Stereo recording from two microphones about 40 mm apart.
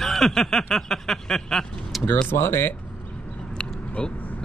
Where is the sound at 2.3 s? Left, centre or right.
Left.